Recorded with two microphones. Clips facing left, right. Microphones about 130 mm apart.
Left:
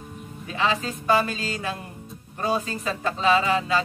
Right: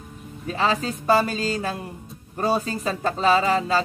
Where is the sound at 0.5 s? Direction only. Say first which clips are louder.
Right 2 dB; 35° right (ahead or behind).